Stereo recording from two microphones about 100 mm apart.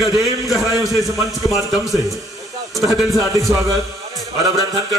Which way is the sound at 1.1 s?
Centre (ahead or behind).